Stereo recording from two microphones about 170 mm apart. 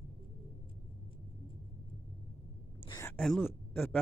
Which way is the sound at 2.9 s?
15° left (ahead or behind).